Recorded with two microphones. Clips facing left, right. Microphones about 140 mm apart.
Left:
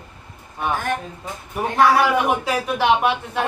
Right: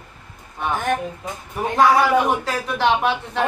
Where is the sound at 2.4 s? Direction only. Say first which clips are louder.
Left 1 dB; 10° left (ahead or behind).